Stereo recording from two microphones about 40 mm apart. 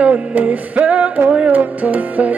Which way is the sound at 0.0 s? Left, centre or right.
Right.